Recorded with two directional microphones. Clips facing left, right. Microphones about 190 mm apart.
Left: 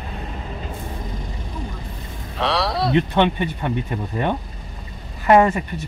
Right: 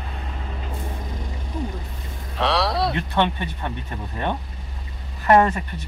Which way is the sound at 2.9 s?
15° left (ahead or behind).